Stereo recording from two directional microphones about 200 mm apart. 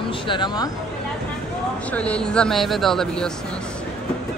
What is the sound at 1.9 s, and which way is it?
Speech, 5° left (ahead or behind).